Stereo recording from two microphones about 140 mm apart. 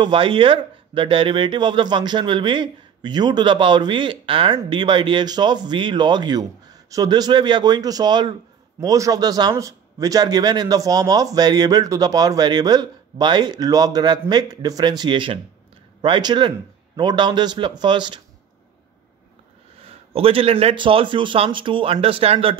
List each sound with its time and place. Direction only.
0.0 s a man's voice: 35° right (ahead or behind)
19.8 s speech: 45° right (ahead or behind)